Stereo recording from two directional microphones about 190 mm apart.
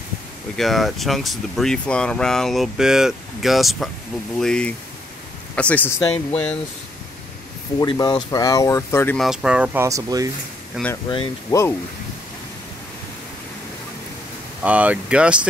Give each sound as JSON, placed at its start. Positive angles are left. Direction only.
{"t": 0.6, "sound": "speech", "side_deg": 0}
{"t": 7.8, "sound": "speech", "side_deg": 20}
{"t": 9.2, "sound": "speech", "side_deg": -5}
{"t": 10.8, "sound": "speech", "side_deg": -5}
{"t": 14.6, "sound": "speech", "side_deg": -5}